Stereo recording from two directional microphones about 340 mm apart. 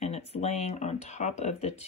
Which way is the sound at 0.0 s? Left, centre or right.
Centre.